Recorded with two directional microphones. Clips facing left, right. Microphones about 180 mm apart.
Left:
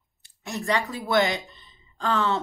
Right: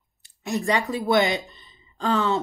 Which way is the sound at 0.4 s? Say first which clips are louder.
Right 3 dB; 15° right (ahead or behind).